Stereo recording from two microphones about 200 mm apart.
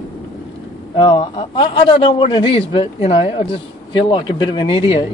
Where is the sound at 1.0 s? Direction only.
25° left (ahead or behind).